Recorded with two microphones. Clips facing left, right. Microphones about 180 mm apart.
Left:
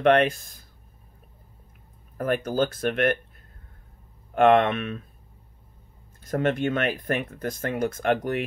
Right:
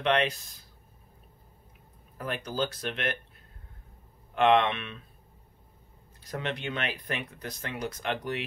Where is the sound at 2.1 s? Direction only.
50° left (ahead or behind).